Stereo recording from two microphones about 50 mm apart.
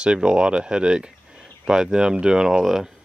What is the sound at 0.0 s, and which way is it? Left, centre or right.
Speech, centre.